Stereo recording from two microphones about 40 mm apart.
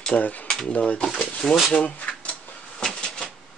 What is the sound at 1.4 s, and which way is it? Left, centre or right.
Speech, centre.